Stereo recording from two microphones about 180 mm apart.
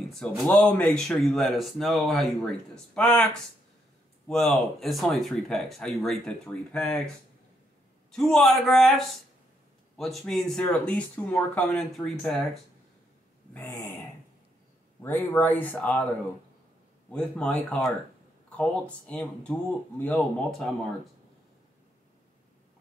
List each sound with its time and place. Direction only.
0.1 s speech: 5° left (ahead or behind)
4.3 s speech: 5° left (ahead or behind)
8.1 s speech: centre (ahead or behind)
13.5 s a sound: 10° left (ahead or behind)
15.0 s speech: 10° left (ahead or behind)
17.1 s speech: 5° left (ahead or behind)